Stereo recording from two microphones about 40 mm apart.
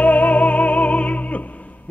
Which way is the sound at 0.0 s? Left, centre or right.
Left.